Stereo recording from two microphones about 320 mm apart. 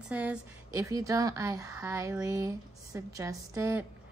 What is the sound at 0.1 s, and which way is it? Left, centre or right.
A woman's voice, centre.